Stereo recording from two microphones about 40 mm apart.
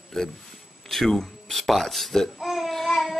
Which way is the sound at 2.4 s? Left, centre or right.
Centre.